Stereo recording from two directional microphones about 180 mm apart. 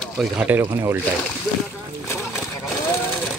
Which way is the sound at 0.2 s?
10° right (ahead or behind).